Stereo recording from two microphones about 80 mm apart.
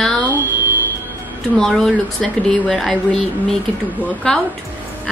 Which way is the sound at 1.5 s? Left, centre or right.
Centre.